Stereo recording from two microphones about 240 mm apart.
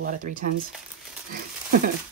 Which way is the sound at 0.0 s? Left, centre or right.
Right.